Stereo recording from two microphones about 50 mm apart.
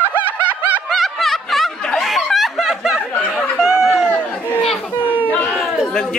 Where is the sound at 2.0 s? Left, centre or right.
Centre.